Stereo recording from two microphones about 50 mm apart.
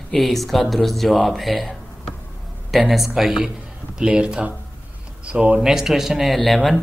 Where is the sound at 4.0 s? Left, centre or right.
Centre.